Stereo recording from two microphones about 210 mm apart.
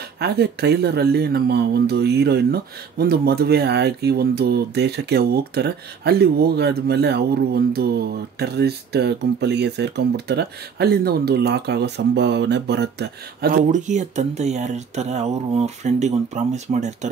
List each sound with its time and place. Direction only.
0.2 s speech: 50° right (ahead or behind); by 17.1 s 35° right (ahead or behind)